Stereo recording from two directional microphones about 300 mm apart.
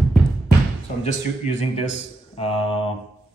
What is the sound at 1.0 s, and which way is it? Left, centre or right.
Speech, left.